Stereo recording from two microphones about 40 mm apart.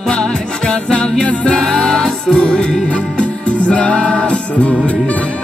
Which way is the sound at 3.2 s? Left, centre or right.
Left.